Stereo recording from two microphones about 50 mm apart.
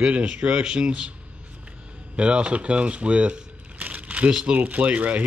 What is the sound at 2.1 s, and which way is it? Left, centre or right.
Speech, right.